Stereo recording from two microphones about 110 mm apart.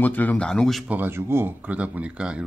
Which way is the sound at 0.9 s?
20° right (ahead or behind).